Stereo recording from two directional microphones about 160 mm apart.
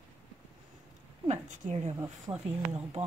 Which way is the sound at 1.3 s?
45° right (ahead or behind).